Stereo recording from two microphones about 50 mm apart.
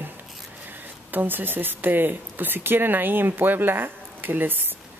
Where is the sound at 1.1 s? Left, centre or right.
Right.